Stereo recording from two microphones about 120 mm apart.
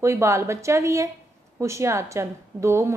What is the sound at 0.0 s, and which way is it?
A woman's voice, 25° right (ahead or behind).